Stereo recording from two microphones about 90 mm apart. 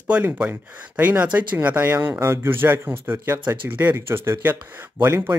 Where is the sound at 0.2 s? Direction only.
20° right (ahead or behind).